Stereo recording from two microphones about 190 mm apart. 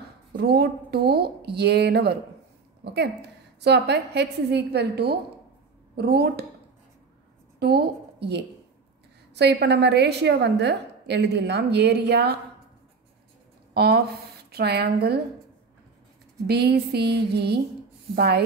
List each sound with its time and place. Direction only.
0.4 s a woman's voice: 55° right (ahead or behind)
7.5 s a woman's voice: 60° right (ahead or behind)
13.7 s a woman's voice: 55° right (ahead or behind)
16.4 s a woman's voice: 60° right (ahead or behind)